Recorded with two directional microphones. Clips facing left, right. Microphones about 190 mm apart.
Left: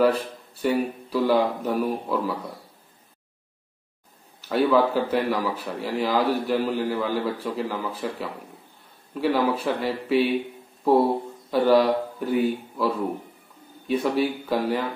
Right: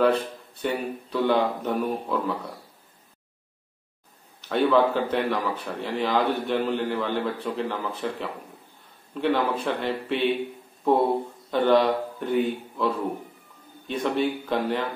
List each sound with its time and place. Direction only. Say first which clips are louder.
0.6 s speech: left 4 dB; 5° left (ahead or behind)
4.4 s a man's voice: left 1 dB; 5° left (ahead or behind)
11.5 s a man's voice: left 1 dB; 5° left (ahead or behind)